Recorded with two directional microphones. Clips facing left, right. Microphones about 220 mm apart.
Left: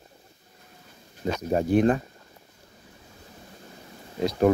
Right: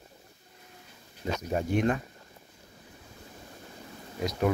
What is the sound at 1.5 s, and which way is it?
Speech, 35° left (ahead or behind).